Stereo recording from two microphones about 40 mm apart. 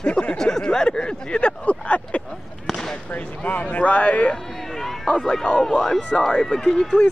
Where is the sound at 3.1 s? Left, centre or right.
Left.